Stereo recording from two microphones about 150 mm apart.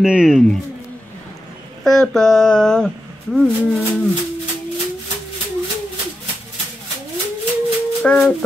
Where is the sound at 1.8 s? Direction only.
5° left (ahead or behind).